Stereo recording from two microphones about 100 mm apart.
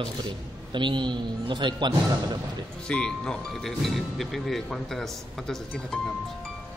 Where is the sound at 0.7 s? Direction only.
50° right (ahead or behind).